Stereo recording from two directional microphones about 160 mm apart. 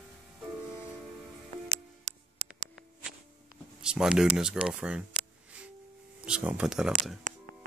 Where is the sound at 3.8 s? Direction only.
5° right (ahead or behind).